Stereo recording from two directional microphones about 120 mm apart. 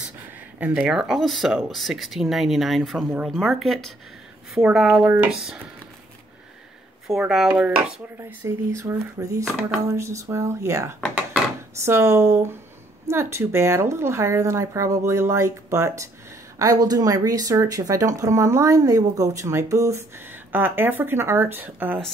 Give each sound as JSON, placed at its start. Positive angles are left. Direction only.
{"t": 0.7, "sound": "speech", "side_deg": -5}
{"t": 7.1, "sound": "speech", "side_deg": -5}
{"t": 8.2, "sound": "speech", "side_deg": -25}